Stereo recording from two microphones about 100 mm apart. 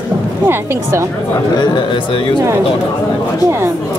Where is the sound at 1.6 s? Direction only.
45° left (ahead or behind).